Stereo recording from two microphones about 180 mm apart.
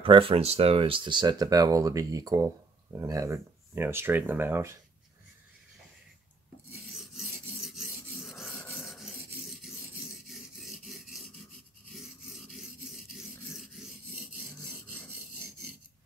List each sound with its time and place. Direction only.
0.0 s speech: 30° right (ahead or behind); by 4.7 s 15° right (ahead or behind)
8.2 s rub: centre (ahead or behind)
8.8 s filing: centre (ahead or behind)
15.0 s rub: 65° right (ahead or behind)